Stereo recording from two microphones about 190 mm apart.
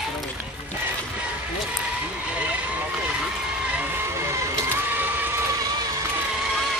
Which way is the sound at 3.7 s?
10° right (ahead or behind).